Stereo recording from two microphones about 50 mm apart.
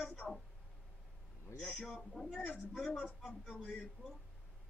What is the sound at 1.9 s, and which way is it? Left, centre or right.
Speech, centre.